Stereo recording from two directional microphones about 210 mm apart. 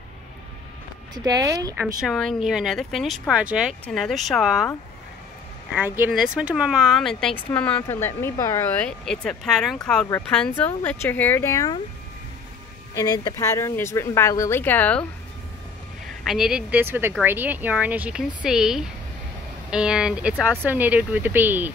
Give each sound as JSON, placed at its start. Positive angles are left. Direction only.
{"t": 1.1, "sound": "speech", "side_deg": -20}
{"t": 2.0, "sound": "speech", "side_deg": 0}
{"t": 5.8, "sound": "speech", "side_deg": -10}
{"t": 12.9, "sound": "speech", "side_deg": 15}
{"t": 16.3, "sound": "speech", "side_deg": -5}